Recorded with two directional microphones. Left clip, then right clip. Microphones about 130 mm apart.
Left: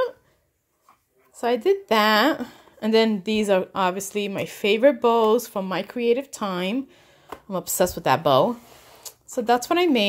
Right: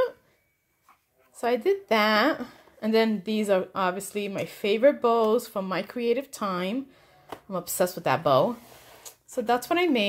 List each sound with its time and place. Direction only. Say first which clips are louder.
1.3 s speech: left 3 dB; 25° left (ahead or behind)